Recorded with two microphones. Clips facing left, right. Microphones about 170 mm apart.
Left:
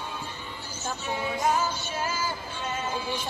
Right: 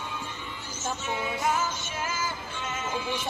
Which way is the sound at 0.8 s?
35° left (ahead or behind).